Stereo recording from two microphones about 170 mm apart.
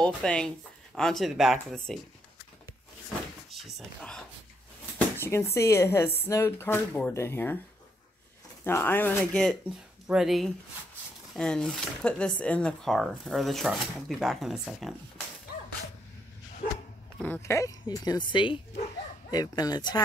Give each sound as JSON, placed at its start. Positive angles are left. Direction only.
{"t": 0.0, "sound": "speech", "side_deg": 5}
{"t": 3.5, "sound": "a sound", "side_deg": 0}
{"t": 4.9, "sound": "speech", "side_deg": 15}
{"t": 8.6, "sound": "speech", "side_deg": 10}
{"t": 17.2, "sound": "speech", "side_deg": 15}